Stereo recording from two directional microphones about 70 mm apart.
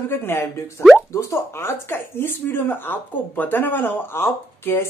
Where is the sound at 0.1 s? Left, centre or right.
Left.